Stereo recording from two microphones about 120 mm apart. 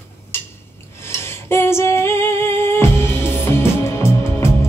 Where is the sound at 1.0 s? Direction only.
20° left (ahead or behind).